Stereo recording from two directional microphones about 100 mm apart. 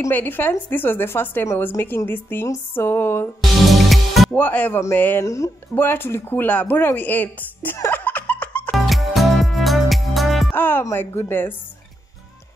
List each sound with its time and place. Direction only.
0.1 s a woman's voice: 20° left (ahead or behind)
3.6 s music: centre (ahead or behind)
4.3 s a woman's voice: 15° left (ahead or behind)
5.2 s a woman's voice: 30° left (ahead or behind)
8.0 s laughter: 15° left (ahead or behind)
8.7 s music: centre (ahead or behind)
10.5 s speech: 20° left (ahead or behind)